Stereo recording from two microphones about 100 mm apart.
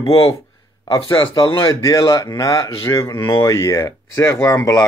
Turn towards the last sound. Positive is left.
turn(degrees=30)  # may be behind; listen again after turning